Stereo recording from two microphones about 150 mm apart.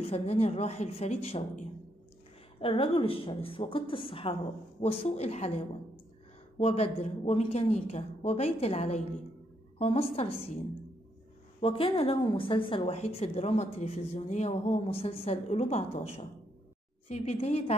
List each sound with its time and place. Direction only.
0.0 s a woman's voice: 45° left (ahead or behind)
2.6 s a woman's voice: 35° left (ahead or behind)
11.6 s a woman's voice: 40° left (ahead or behind)